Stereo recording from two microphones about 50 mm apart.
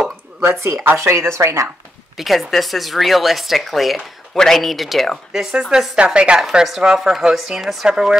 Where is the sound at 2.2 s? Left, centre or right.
Centre.